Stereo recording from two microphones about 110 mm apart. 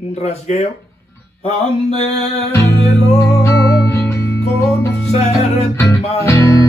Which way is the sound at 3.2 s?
25° left (ahead or behind).